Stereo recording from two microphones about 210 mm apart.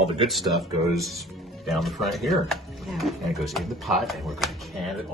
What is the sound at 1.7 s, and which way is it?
Speech, centre (ahead or behind).